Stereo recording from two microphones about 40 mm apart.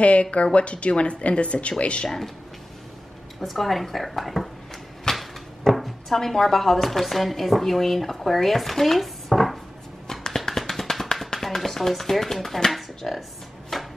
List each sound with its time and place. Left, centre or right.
0.0 s speech: left
2.0 s speech: centre
3.3 s speech: centre
5.1 s cupboard open or close: centre
5.7 s speech: centre
10.2 s tap: centre
10.7 s a sound: centre
11.3 s speech: centre
13.7 s chopping: centre